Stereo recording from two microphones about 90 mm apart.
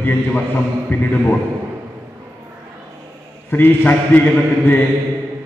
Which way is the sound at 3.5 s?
20° left (ahead or behind).